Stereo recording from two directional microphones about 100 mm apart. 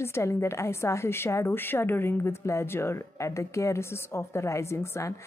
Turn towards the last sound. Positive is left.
turn(degrees=25)  # may be behind; listen again after turning